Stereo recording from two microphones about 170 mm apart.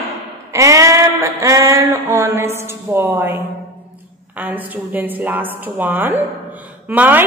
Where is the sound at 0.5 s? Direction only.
20° right (ahead or behind).